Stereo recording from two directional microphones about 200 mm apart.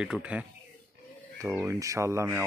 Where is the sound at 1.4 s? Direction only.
10° right (ahead or behind).